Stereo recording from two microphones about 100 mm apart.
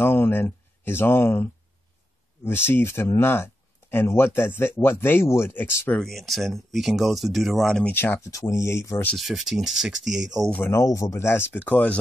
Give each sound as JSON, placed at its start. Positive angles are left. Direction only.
{"t": 0.0, "sound": "speech", "side_deg": 25}
{"t": 5.9, "sound": "speech", "side_deg": 0}
{"t": 7.9, "sound": "speech", "side_deg": 25}
{"t": 9.1, "sound": "speech", "side_deg": 0}
{"t": 10.7, "sound": "speech", "side_deg": 30}